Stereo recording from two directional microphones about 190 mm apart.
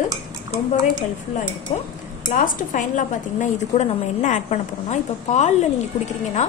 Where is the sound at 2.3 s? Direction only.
45° left (ahead or behind).